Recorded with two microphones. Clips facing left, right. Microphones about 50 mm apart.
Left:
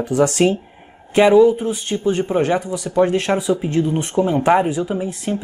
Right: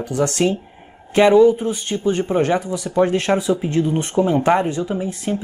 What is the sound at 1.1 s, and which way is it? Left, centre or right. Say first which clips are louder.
Speech: even; centre.